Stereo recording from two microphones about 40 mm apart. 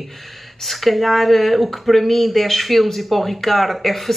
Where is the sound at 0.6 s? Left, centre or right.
Centre.